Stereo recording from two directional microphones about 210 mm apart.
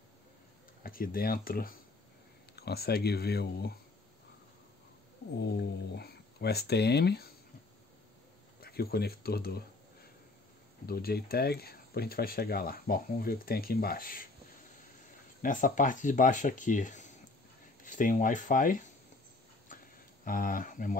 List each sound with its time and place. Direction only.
0.8 s speech: 45° left (ahead or behind)
5.4 s speech: 50° left (ahead or behind)
8.5 s speech: 45° left (ahead or behind)
10.9 s speech: 45° left (ahead or behind)
15.4 s speech: 40° left (ahead or behind)
19.7 s tick-tock: 40° left (ahead or behind)
20.2 s speech: 40° left (ahead or behind)